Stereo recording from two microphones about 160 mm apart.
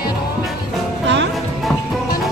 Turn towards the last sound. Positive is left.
turn(degrees=-90)